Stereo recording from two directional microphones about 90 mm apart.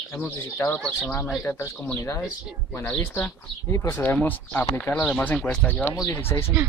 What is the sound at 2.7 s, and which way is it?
Speech, 20° left (ahead or behind).